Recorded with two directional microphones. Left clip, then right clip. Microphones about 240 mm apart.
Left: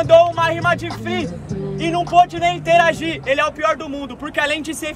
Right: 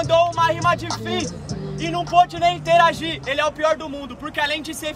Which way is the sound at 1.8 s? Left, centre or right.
Centre.